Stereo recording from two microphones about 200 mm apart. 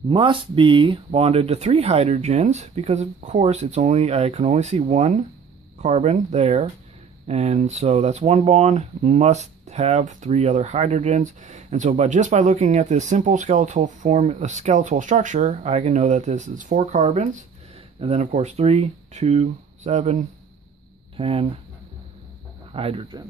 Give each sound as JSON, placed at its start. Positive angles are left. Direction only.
{"t": 0.1, "sound": "speech", "side_deg": -25}
{"t": 22.7, "sound": "speech", "side_deg": -30}